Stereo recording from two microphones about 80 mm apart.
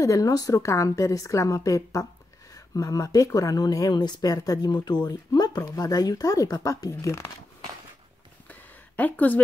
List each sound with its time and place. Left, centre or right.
0.0 s a woman's voice: left
3.9 s speech: left
8.5 s a sound: centre